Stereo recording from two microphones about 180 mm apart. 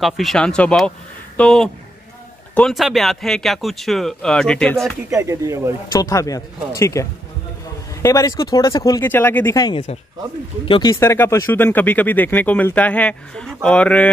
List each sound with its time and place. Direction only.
0.0 s speech: centre (ahead or behind)
5.1 s speech: 15° right (ahead or behind)
5.9 s speech: 20° left (ahead or behind)